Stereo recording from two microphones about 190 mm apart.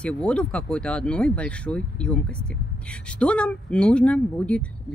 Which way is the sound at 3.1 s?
5° left (ahead or behind).